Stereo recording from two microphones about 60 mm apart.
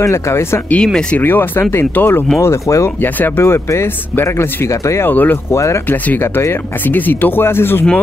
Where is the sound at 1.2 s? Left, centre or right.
Left.